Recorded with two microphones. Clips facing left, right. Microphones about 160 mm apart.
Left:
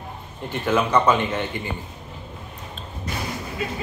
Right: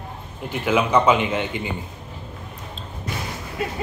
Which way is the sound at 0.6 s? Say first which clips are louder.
Right 1 dB; 10° right (ahead or behind).